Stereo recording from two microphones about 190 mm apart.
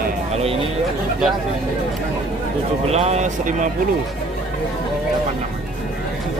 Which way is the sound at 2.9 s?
35° right (ahead or behind).